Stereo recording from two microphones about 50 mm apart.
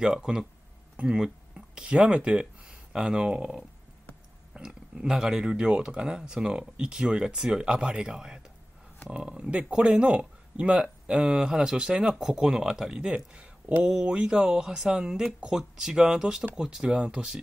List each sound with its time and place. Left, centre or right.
0.0 s speech: centre
4.6 s speech: centre